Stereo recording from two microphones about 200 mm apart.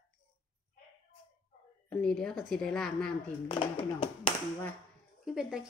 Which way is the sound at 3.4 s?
25° left (ahead or behind).